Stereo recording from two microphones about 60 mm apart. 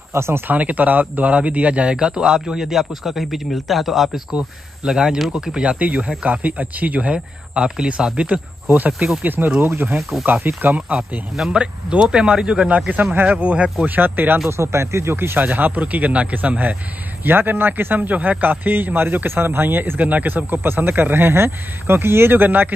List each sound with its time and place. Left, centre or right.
0.1 s speech: right
0.5 s a man's voice: right
9.2 s a man's voice: right
11.0 s speech: centre
11.5 s a man's voice: centre
13.1 s a man's voice: right
13.4 s speech: right
13.8 s a man's voice: right
14.6 s a man's voice: right